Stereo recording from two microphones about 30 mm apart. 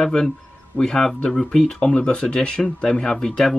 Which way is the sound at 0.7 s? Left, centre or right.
Left.